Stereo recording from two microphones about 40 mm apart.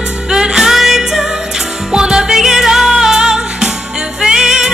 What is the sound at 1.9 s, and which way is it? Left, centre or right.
Music, centre.